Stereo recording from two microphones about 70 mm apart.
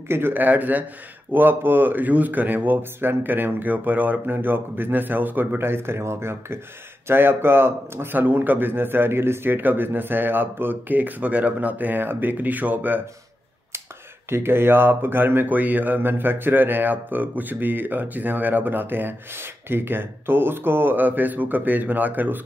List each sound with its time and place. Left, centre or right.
0.1 s speech: right
14.3 s speech: right